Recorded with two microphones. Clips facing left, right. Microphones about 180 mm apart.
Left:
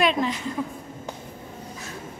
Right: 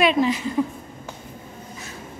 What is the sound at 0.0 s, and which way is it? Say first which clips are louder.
Speech: right 4 dB; 5° right (ahead or behind).